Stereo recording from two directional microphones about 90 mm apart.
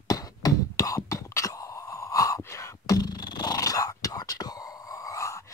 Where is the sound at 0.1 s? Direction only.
40° left (ahead or behind).